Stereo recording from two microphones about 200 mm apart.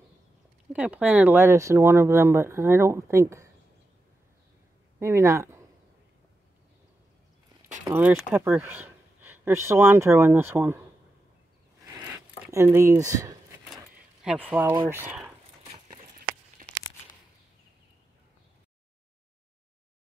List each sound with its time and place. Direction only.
0.7 s speech: 5° right (ahead or behind)
4.9 s speech: 15° right (ahead or behind)
7.9 s speech: 10° right (ahead or behind)
12.4 s speech: 15° right (ahead or behind)
16.6 s tearing: 40° right (ahead or behind)